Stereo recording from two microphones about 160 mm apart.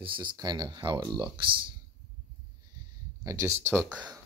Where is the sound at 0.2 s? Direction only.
25° right (ahead or behind).